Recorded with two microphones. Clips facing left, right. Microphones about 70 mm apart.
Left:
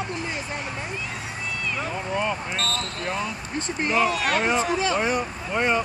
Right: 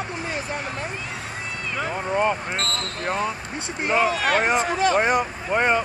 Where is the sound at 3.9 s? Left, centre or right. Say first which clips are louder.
Right 3 dB; right.